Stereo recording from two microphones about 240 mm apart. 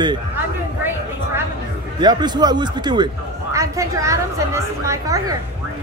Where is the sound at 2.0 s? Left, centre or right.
Centre.